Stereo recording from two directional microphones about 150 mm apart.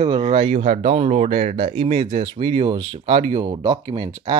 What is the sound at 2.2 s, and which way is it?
Speech, 35° right (ahead or behind).